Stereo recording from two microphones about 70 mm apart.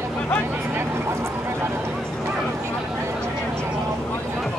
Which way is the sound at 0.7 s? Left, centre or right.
Right.